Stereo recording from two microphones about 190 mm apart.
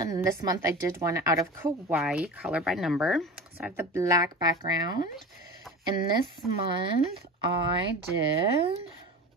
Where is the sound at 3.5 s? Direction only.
10° right (ahead or behind).